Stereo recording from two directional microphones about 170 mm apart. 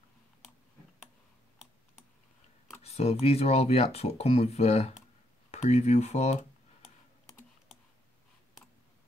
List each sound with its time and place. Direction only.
2.8 s speech: 35° left (ahead or behind)